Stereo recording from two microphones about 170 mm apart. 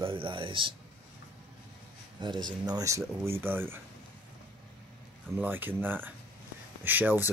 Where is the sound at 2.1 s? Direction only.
25° right (ahead or behind).